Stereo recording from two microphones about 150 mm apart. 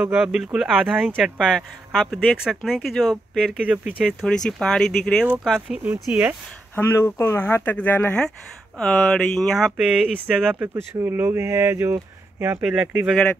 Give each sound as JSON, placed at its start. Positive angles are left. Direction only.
{"t": 0.0, "sound": "speech", "side_deg": -5}
{"t": 4.5, "sound": "speech", "side_deg": 5}
{"t": 6.7, "sound": "speech", "side_deg": 15}
{"t": 13.0, "sound": "speech", "side_deg": 5}